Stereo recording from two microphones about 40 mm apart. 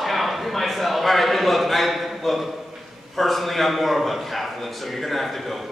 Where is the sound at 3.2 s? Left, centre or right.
Centre.